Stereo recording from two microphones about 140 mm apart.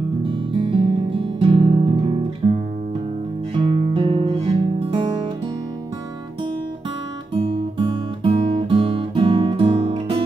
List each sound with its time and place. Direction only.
0.2 s music: 40° right (ahead or behind)
2.4 s guitar: 30° right (ahead or behind)
7.7 s music: 40° right (ahead or behind)